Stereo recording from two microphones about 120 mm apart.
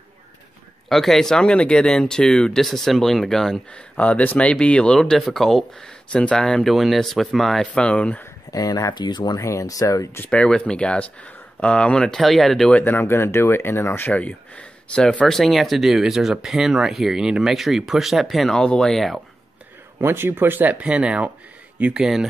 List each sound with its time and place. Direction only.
0.8 s speech: centre (ahead or behind)
8.5 s speech: 30° left (ahead or behind)
10.2 s speech: 10° left (ahead or behind)
12.8 s speech: 20° left (ahead or behind); by 19.2 s centre (ahead or behind)
20.0 s speech: 20° right (ahead or behind)